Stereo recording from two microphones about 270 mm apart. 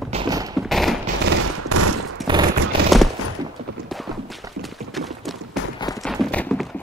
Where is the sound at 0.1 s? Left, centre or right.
Centre.